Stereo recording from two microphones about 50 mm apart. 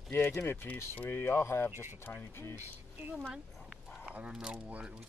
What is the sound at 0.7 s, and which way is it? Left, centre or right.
Speech, left.